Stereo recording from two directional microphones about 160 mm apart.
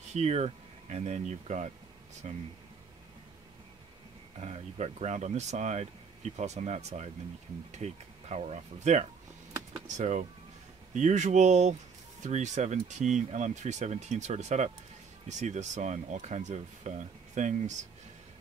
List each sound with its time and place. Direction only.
0.1 s speech: 45° right (ahead or behind)
4.4 s speech: 45° right (ahead or behind)